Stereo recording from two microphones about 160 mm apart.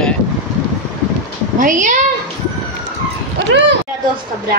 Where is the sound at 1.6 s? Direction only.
50° right (ahead or behind).